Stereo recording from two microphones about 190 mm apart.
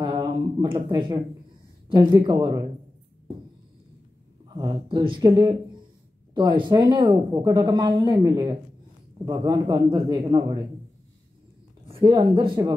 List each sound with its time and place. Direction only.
0.0 s a sound: 20° right (ahead or behind)
1.9 s speech: 20° right (ahead or behind)
4.6 s speech: 25° right (ahead or behind)
12.0 s speech: 25° right (ahead or behind)